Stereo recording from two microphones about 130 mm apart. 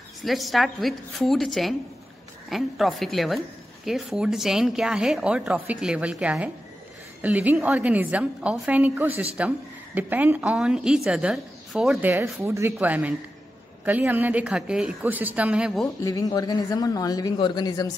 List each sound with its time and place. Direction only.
0.2 s a woman's voice: centre (ahead or behind)
12.0 s a woman's voice: 15° right (ahead or behind)
16.0 s speech: 25° left (ahead or behind)